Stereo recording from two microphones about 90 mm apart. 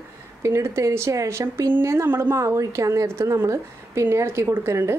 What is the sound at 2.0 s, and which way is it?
Speech, 25° right (ahead or behind).